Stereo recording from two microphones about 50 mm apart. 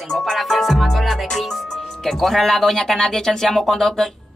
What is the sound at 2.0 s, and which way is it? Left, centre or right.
A man's voice, centre.